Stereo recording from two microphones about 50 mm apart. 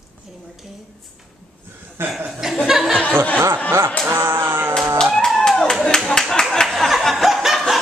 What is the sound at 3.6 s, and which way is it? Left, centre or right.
Music, right.